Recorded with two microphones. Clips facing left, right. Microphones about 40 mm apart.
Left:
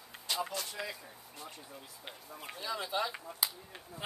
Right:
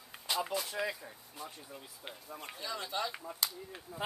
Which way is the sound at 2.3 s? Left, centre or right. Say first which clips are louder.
Left 2 dB; centre.